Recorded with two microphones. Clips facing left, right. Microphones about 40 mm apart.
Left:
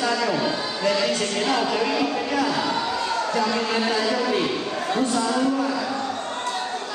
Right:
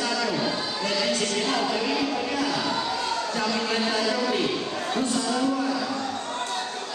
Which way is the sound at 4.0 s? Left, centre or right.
Left.